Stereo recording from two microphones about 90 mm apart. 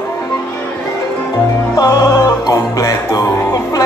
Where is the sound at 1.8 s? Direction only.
45° left (ahead or behind).